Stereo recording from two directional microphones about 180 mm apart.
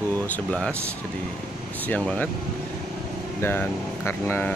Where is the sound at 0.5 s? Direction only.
5° left (ahead or behind).